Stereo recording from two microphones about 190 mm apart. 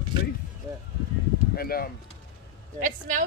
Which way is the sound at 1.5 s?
50° left (ahead or behind).